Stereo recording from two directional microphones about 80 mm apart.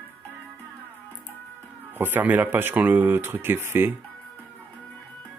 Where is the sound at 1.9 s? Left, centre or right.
Right.